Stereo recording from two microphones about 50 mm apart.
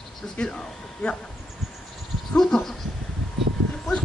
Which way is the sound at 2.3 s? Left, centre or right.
Centre.